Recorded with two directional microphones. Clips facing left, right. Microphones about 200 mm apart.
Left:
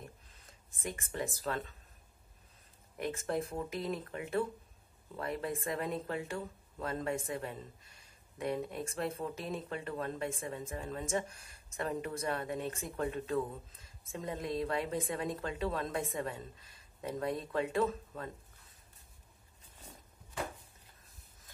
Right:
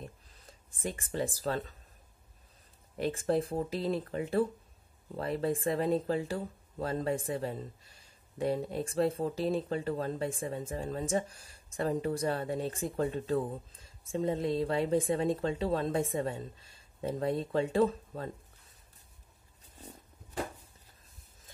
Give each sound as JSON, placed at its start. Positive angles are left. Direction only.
{"t": 0.5, "sound": "speech", "side_deg": -30}
{"t": 3.0, "sound": "speech", "side_deg": -30}